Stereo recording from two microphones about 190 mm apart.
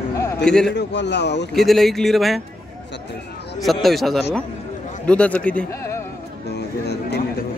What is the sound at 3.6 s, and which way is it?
A man's voice, centre (ahead or behind).